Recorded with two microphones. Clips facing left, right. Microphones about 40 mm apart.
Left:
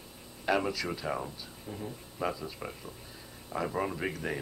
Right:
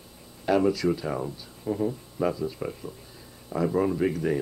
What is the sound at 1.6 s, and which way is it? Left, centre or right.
Speech, right.